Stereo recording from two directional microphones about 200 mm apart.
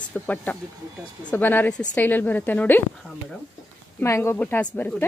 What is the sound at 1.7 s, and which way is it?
Speech, 20° left (ahead or behind).